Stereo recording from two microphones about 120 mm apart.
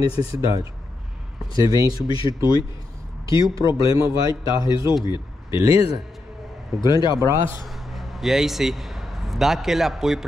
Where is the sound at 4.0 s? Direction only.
25° right (ahead or behind).